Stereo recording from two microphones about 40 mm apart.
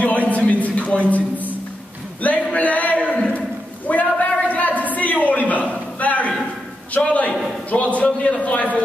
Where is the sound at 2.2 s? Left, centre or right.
Left.